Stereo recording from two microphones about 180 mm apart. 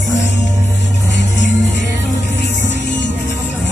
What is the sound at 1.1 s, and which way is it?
Music, 80° left.